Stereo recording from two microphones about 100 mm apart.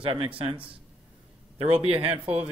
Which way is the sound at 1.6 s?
85° right.